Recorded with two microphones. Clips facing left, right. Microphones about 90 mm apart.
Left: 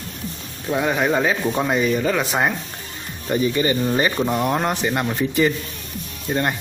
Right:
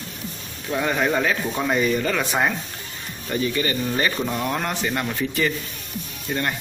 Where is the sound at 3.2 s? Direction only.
20° left (ahead or behind).